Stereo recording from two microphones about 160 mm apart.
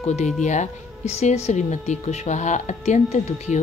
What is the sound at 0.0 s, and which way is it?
A woman's voice, 45° left (ahead or behind).